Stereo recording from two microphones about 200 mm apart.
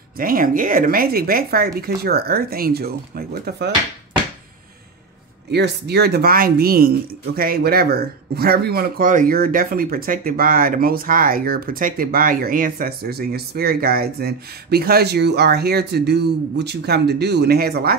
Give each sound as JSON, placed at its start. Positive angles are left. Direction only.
{"t": 0.2, "sound": "speech", "side_deg": -45}
{"t": 5.5, "sound": "speech", "side_deg": -55}